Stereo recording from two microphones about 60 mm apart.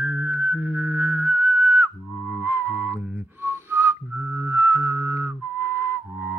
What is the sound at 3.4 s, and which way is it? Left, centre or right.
Whistling, right.